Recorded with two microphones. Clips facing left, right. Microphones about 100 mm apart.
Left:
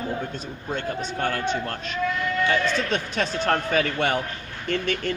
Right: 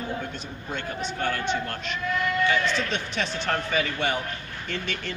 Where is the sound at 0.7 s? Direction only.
40° left (ahead or behind).